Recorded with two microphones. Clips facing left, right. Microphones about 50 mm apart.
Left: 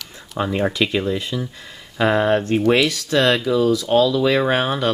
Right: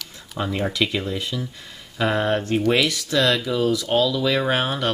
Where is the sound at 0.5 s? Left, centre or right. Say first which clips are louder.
Left 3 dB; left.